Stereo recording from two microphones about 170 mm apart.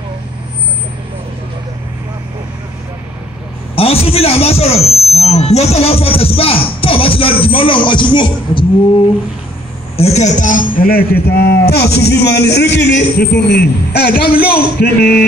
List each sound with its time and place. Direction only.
3.7 s speech: 35° left (ahead or behind)
9.9 s a man's voice: 40° left (ahead or behind); by 15.2 s 70° left (ahead or behind)